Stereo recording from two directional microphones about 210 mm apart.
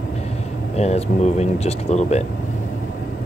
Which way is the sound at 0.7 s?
30° left (ahead or behind).